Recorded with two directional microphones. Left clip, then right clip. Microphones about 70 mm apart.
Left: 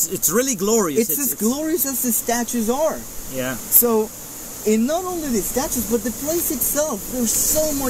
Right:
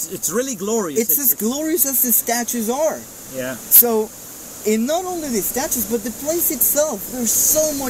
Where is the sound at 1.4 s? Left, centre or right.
Right.